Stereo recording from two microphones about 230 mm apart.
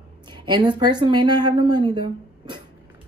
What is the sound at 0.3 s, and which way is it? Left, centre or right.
Speech, centre.